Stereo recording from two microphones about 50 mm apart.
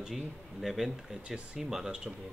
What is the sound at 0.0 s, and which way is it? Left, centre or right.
Speech, centre.